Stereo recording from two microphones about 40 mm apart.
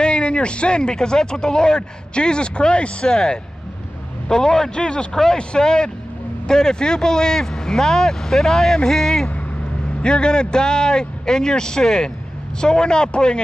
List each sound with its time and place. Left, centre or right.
0.0 s speech: left; by 9.3 s centre
10.0 s speech: left